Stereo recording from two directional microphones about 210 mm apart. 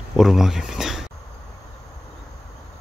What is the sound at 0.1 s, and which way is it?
Speech, centre (ahead or behind).